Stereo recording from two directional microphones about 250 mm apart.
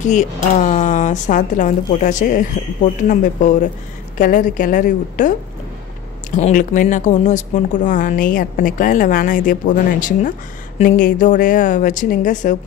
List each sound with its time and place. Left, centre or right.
0.0 s a woman's voice: left
6.3 s a woman's voice: left